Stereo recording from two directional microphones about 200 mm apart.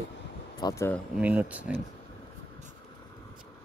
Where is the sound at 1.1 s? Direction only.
5° right (ahead or behind).